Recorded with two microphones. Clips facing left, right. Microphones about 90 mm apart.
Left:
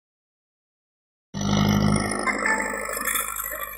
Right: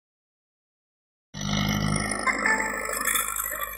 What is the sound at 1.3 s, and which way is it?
Roar, 80° left.